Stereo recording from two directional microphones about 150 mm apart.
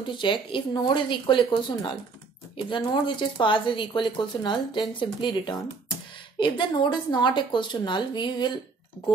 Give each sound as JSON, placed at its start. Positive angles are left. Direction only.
{"t": 0.0, "sound": "speech", "side_deg": 35}